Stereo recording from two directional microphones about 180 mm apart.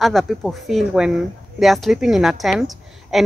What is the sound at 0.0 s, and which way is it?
A woman's voice, centre (ahead or behind).